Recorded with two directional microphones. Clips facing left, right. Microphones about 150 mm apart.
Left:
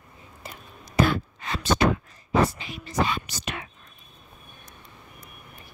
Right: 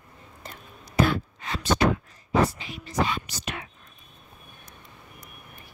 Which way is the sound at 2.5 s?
70° left (ahead or behind).